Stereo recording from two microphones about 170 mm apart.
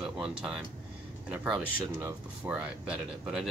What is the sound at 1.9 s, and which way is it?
Speech, 10° right (ahead or behind).